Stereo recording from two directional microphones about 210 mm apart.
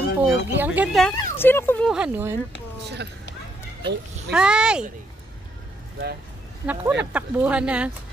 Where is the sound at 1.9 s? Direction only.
5° right (ahead or behind).